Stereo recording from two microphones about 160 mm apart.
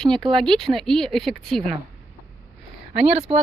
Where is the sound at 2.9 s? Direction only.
5° right (ahead or behind).